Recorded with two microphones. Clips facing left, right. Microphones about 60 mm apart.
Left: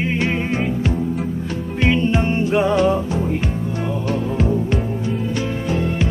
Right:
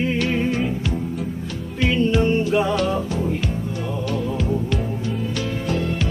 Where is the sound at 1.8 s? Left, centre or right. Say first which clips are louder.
Left 1 dB; left.